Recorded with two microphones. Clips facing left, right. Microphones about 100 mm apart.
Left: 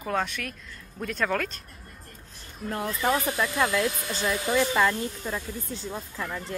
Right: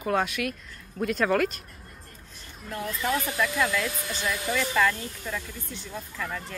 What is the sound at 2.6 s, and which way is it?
Speech, 40° left (ahead or behind).